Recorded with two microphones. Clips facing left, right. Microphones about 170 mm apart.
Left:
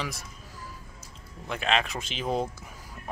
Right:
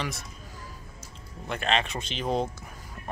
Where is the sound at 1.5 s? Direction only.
Centre (ahead or behind).